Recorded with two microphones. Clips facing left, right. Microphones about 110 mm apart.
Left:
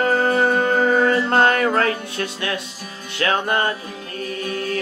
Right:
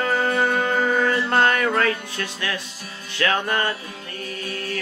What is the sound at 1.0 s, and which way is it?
Mantra, 30° left (ahead or behind).